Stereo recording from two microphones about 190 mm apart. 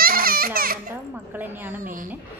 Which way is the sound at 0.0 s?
50° right (ahead or behind).